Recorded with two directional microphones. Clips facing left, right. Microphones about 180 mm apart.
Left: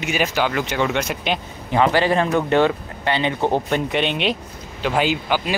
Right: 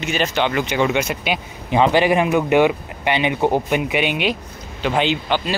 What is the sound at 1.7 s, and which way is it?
Speech, 15° right (ahead or behind).